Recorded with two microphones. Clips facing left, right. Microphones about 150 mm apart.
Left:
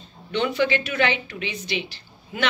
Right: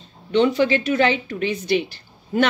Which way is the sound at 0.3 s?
35° right (ahead or behind).